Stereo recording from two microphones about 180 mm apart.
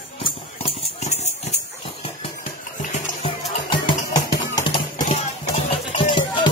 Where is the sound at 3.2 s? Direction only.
25° left (ahead or behind).